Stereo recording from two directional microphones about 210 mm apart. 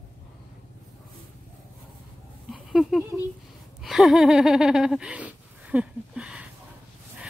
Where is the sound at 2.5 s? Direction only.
Centre (ahead or behind).